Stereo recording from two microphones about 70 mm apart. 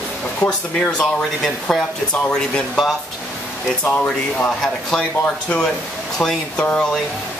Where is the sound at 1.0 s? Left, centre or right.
Centre.